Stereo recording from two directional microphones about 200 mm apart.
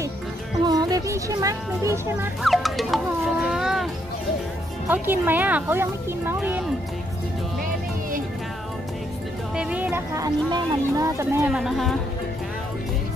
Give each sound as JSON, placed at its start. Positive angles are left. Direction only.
{"t": 0.7, "sound": "speech", "side_deg": -20}
{"t": 2.4, "sound": "speech", "side_deg": 0}
{"t": 3.4, "sound": "a sound", "side_deg": 0}
{"t": 4.8, "sound": "speech", "side_deg": -10}
{"t": 9.6, "sound": "speech", "side_deg": -5}